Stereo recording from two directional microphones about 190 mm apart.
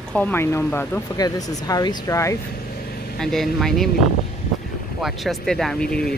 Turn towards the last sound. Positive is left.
turn(degrees=5)  # may be behind; listen again after turning